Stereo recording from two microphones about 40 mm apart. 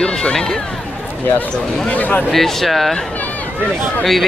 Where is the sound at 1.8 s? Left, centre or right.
Left.